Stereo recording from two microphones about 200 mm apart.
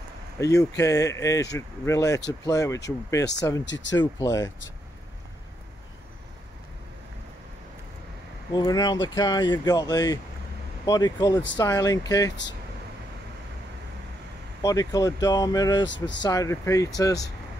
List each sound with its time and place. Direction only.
0.4 s speech: 15° left (ahead or behind)
3.6 s speech: 65° left (ahead or behind)
3.9 s speech: 15° left (ahead or behind)
8.5 s speech: 20° left (ahead or behind)
14.6 s speech: 15° left (ahead or behind)
15.8 s speech: 65° left (ahead or behind)
16.2 s speech: 20° left (ahead or behind)